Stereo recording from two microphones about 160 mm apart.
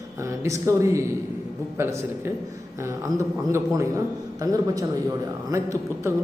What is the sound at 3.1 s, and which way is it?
Speech, 20° right (ahead or behind).